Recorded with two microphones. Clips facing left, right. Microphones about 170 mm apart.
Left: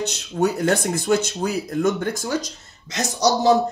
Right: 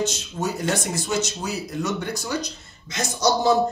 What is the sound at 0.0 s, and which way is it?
A man's voice, 65° left (ahead or behind).